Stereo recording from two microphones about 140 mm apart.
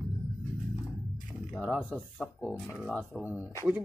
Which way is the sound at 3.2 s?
15° right (ahead or behind).